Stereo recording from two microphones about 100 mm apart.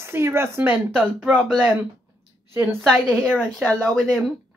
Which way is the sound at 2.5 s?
25° right (ahead or behind).